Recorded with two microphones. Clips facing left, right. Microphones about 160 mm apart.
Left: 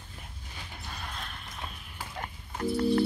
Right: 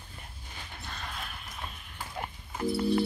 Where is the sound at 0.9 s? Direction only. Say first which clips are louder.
Even; 5° right (ahead or behind).